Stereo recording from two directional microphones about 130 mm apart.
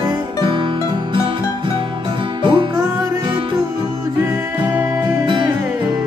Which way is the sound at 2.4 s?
40° right (ahead or behind).